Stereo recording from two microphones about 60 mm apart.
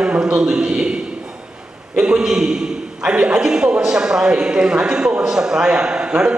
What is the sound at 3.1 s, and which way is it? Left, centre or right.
A man's voice, centre.